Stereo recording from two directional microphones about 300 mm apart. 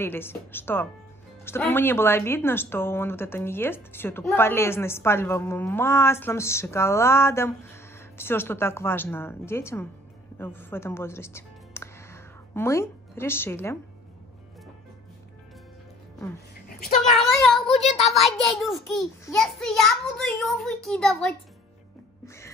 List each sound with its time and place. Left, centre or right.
0.0 s a woman's voice: centre
17.4 s child singing: centre
17.8 s a child's voice: left
18.1 s a child's voice: centre
22.2 s music: centre